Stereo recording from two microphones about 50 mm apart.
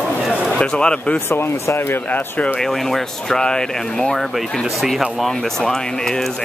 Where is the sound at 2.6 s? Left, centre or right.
Centre.